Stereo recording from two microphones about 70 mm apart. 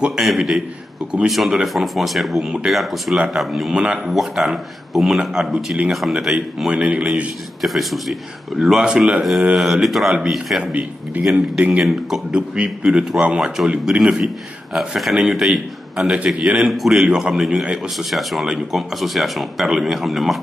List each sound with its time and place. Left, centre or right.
0.0 s speech: centre
6.7 s a man's voice: centre
7.6 s a man's voice: centre
10.6 s a man's voice: centre
11.8 s speech: centre
12.4 s a man's voice: centre